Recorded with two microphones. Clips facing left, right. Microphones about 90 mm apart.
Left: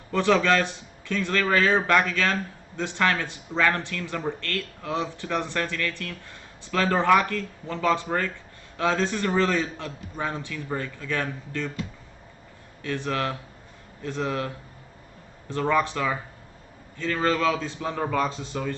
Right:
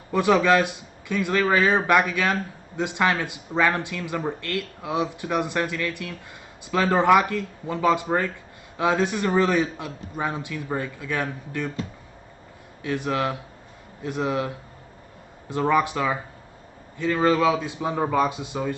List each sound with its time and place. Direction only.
0.1 s a man's voice: 15° right (ahead or behind)
12.8 s a man's voice: 15° right (ahead or behind)
15.5 s a man's voice: 15° right (ahead or behind)